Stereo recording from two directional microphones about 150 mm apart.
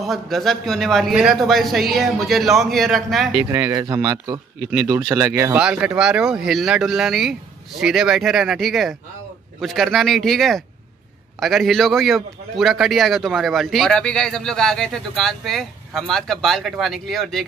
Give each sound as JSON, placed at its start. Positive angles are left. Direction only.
{"t": 0.0, "sound": "a man's voice", "side_deg": 0}
{"t": 3.4, "sound": "speech", "side_deg": -20}
{"t": 5.6, "sound": "a man's voice", "side_deg": -5}